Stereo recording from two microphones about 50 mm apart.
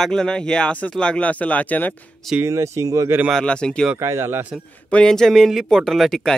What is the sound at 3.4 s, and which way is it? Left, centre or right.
Speech, centre.